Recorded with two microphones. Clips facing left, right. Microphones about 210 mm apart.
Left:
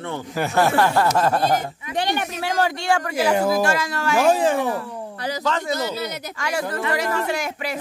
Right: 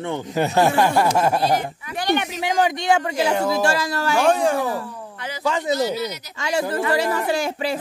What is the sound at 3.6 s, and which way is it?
Speech, 35° right (ahead or behind).